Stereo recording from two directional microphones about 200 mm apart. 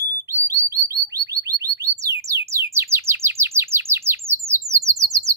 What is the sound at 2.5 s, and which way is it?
Chirp, 15° right (ahead or behind).